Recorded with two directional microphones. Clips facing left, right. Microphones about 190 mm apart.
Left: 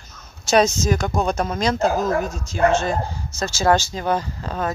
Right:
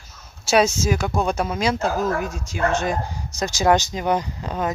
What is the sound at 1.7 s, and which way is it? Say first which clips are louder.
Speech: left 3 dB; 35° left (ahead or behind).